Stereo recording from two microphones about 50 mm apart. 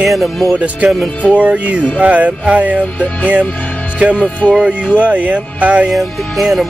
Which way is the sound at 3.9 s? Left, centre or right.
Right.